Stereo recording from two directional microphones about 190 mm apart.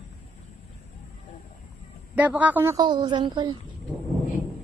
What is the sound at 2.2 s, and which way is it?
Speech, 10° right (ahead or behind).